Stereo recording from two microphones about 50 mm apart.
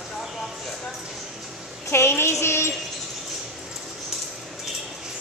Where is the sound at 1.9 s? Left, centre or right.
Left.